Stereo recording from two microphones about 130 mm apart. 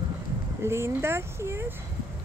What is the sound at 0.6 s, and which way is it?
Speech, 20° right (ahead or behind).